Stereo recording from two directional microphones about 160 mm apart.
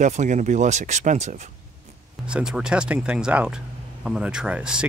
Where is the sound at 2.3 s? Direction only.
5° right (ahead or behind).